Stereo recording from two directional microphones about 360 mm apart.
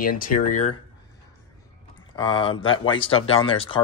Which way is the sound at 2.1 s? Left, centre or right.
Centre.